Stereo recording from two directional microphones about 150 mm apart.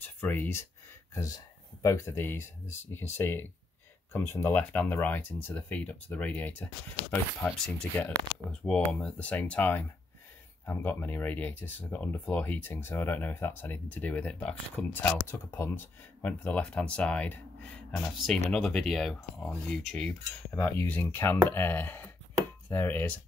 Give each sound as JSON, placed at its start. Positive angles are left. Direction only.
{"t": 0.0, "sound": "speech", "side_deg": 10}